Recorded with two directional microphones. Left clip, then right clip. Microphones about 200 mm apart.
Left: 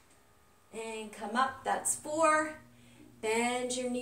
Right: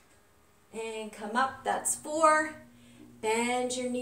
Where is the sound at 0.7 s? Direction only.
Centre (ahead or behind).